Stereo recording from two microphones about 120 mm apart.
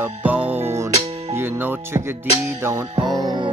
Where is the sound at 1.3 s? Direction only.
20° right (ahead or behind).